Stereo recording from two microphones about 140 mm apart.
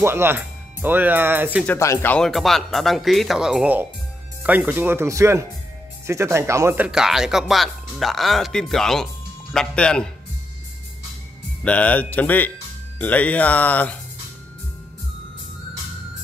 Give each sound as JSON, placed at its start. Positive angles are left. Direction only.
{"t": 0.0, "sound": "speech", "side_deg": -15}
{"t": 1.7, "sound": "speech", "side_deg": 20}
{"t": 2.1, "sound": "speech", "side_deg": 0}
{"t": 6.9, "sound": "speech", "side_deg": -5}
{"t": 11.6, "sound": "speech", "side_deg": 10}